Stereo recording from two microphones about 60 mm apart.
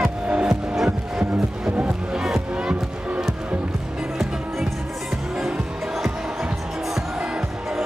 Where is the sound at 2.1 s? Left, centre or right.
Centre.